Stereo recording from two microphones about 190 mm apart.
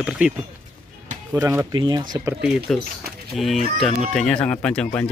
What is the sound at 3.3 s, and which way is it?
Speech, centre (ahead or behind).